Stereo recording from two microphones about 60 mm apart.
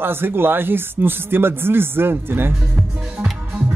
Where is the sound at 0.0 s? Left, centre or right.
Right.